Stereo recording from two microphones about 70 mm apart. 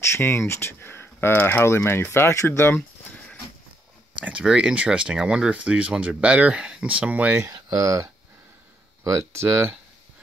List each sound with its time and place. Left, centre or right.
0.1 s speech: left
4.2 s speech: centre
7.5 s speech: right